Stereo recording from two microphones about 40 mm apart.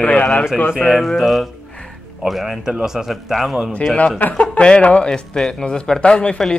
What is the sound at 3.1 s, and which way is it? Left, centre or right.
Speech, centre.